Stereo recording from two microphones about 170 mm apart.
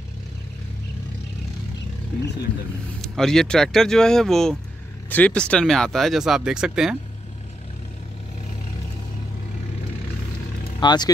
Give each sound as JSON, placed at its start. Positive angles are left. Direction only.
{"t": 3.0, "sound": "speech", "side_deg": 5}
{"t": 10.8, "sound": "speech", "side_deg": 25}